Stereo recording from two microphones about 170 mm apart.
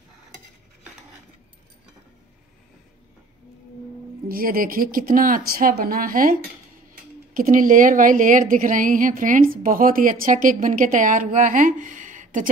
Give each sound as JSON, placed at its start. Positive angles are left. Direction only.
{"t": 4.3, "sound": "speech", "side_deg": -60}
{"t": 7.3, "sound": "a woman's voice", "side_deg": -50}